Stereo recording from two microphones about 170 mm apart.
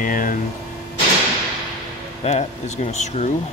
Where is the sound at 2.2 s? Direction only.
40° left (ahead or behind).